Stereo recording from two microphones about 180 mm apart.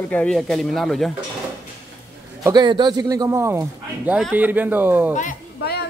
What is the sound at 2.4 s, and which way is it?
A man's voice, 25° right (ahead or behind).